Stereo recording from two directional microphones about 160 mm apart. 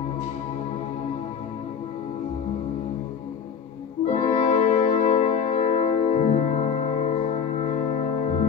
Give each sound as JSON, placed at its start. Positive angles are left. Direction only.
{"t": 4.0, "sound": "music", "side_deg": 45}